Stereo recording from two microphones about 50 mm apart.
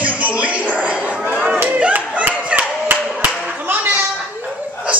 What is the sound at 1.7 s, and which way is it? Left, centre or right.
Clapping, right.